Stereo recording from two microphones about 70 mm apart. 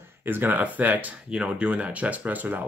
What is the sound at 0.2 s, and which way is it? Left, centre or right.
Speech, right.